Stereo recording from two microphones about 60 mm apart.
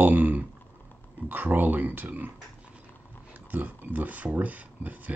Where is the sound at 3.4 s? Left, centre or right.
Right.